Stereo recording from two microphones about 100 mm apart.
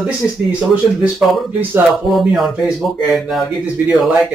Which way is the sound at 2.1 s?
Centre (ahead or behind).